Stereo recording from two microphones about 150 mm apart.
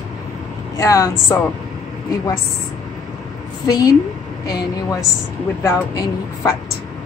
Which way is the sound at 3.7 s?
25° left (ahead or behind).